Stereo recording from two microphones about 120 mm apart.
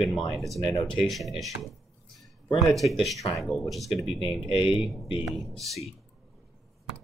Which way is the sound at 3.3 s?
Centre (ahead or behind).